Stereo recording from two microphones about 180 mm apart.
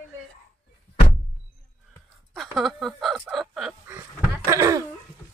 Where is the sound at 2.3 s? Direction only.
Centre (ahead or behind).